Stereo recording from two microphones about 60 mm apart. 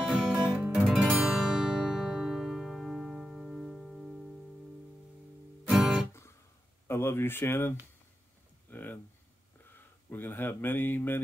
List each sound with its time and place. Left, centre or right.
0.0 s music: centre
5.7 s guitar: centre
6.9 s speech: left
8.6 s a sound: left
9.8 s speech: left